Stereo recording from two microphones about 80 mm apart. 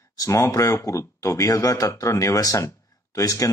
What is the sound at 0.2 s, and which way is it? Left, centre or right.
Speech, left.